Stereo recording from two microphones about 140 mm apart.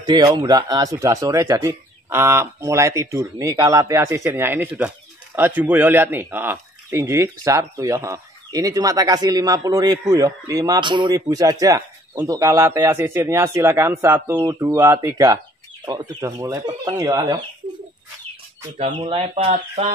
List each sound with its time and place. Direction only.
0.0 s speech: 30° right (ahead or behind)
11.1 s speech: 25° right (ahead or behind)
18.8 s speech: 45° right (ahead or behind)